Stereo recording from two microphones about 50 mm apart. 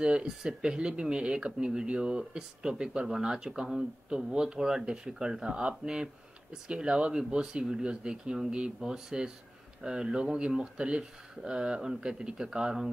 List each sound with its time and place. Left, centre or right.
0.0 s speech: centre